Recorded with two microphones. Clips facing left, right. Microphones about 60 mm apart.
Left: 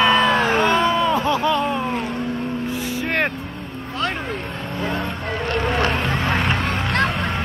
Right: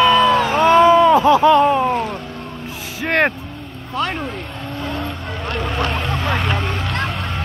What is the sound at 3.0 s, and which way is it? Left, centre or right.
Vehicle, right.